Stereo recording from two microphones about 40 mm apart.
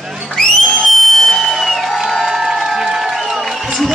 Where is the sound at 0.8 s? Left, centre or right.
Centre.